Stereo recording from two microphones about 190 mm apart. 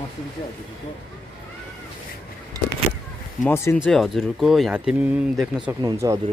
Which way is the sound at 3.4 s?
10° left (ahead or behind).